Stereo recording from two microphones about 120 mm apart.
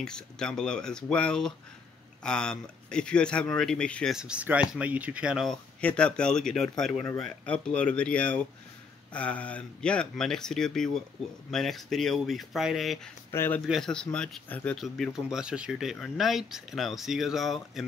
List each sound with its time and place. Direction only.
0.0 s speech: 5° left (ahead or behind)
4.2 s speech: 10° right (ahead or behind)
5.5 s speech: 10° left (ahead or behind)
13.3 s speech: 20° left (ahead or behind)
13.7 s speech: 5° left (ahead or behind)
14.8 s speech: 5° right (ahead or behind)